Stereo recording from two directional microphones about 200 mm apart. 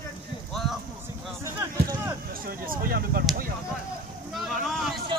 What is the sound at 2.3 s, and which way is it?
Speech, 45° right (ahead or behind).